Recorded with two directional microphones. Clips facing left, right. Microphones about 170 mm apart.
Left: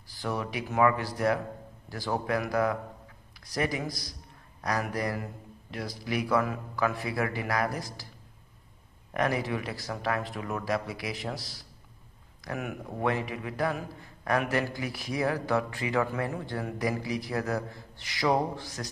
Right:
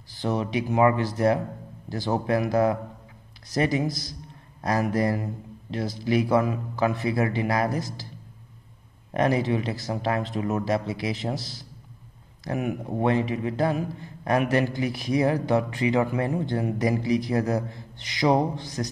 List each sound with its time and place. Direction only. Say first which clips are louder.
0.2 s a man's voice: right 6 dB; 25° right (ahead or behind)
9.1 s a man's voice: right 6 dB; 25° right (ahead or behind)